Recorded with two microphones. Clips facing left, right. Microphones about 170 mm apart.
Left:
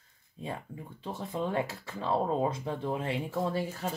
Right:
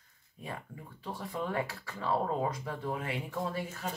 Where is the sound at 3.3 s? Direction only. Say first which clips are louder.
Left 4 dB; 35° left (ahead or behind).